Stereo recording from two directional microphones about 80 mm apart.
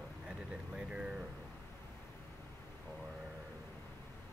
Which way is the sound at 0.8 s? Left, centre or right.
Centre.